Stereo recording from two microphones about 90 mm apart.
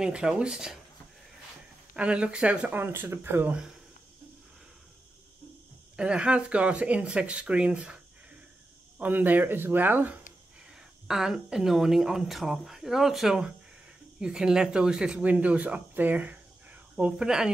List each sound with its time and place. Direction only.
0.0 s speech: 10° right (ahead or behind)
2.0 s speech: 10° right (ahead or behind)
2.8 s speech: 25° right (ahead or behind)
5.9 s speech: 10° right (ahead or behind)
10.7 s speech: 5° right (ahead or behind)